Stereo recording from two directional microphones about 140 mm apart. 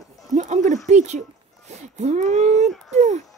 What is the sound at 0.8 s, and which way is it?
Speech, 55° right (ahead or behind).